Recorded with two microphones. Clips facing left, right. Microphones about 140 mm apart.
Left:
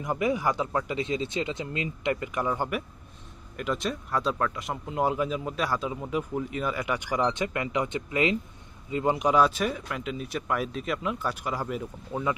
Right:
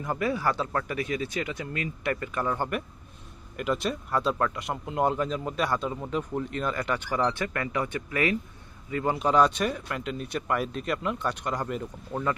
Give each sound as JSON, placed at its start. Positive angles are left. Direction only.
{"t": 0.0, "sound": "speech", "side_deg": 15}
{"t": 3.5, "sound": "speech", "side_deg": 0}
{"t": 9.3, "sound": "speech", "side_deg": 5}